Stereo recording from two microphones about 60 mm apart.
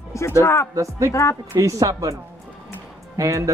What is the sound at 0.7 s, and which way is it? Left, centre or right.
Speech, right.